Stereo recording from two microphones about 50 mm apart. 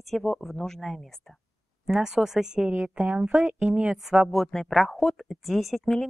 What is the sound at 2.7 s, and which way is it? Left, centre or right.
A woman's voice, right.